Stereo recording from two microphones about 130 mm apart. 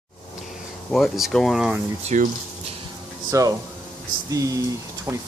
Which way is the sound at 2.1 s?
70° right (ahead or behind).